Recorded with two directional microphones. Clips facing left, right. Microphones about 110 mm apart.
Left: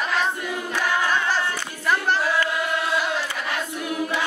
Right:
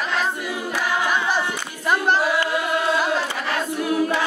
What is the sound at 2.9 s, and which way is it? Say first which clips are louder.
Choir: right 3 dB; 35° right (ahead or behind).